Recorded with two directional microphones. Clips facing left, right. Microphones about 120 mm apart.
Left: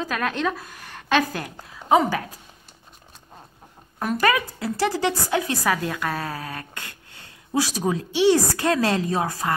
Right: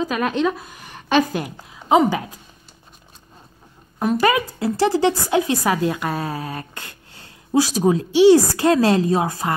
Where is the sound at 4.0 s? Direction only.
20° right (ahead or behind).